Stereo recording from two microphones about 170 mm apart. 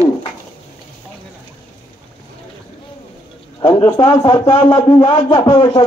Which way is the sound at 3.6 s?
25° left (ahead or behind).